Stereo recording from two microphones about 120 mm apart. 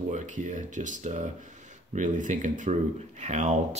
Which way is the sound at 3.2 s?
75° right (ahead or behind).